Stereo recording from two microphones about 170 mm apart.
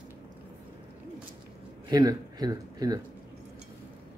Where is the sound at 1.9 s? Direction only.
25° right (ahead or behind).